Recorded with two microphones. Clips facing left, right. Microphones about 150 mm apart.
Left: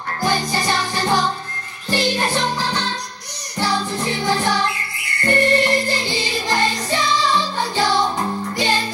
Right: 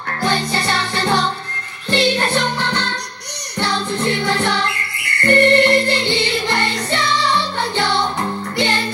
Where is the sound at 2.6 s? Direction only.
65° right (ahead or behind).